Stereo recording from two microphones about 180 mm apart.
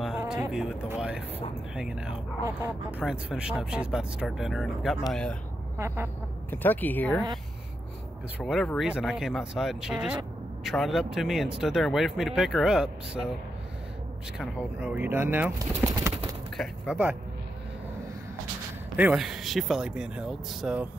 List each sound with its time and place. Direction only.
0.3 s speech: 5° right (ahead or behind)
5.8 s speech: 15° right (ahead or behind)
6.5 s speech: 10° left (ahead or behind)
8.4 s speech: 5° right (ahead or behind)
14.4 s speech: 5° right (ahead or behind)
15.9 s a sound: 20° right (ahead or behind)
16.5 s speech: 5° right (ahead or behind)
18.9 s speech: 5° right (ahead or behind)